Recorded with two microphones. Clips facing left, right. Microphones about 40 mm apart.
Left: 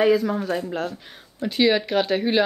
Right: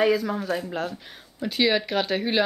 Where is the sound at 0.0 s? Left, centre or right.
Centre.